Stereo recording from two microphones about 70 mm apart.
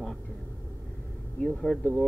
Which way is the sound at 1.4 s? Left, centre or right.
Centre.